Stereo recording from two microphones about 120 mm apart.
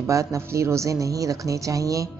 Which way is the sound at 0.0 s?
25° right (ahead or behind).